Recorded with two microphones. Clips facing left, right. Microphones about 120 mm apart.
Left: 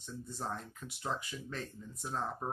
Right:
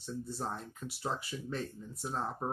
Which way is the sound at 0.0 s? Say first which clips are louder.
Right 3 dB; 10° right (ahead or behind).